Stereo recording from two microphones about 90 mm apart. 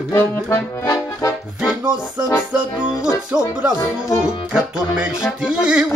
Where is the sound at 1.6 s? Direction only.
10° right (ahead or behind).